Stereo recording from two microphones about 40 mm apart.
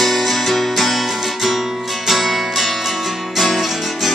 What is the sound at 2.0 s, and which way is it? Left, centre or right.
Music, centre.